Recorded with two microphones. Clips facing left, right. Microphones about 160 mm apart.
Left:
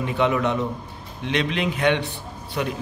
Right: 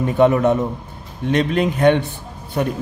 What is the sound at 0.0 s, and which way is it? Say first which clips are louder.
A man's voice: right 7 dB; 45° right (ahead or behind).